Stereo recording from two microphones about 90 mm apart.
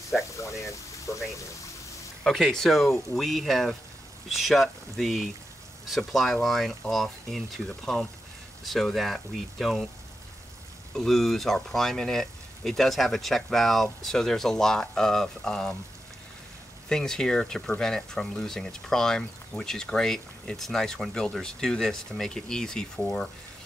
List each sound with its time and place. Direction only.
0.4 s speech: 35° left (ahead or behind)
2.2 s speech: 5° left (ahead or behind)
11.0 s speech: 5° left (ahead or behind)
16.9 s speech: 5° left (ahead or behind)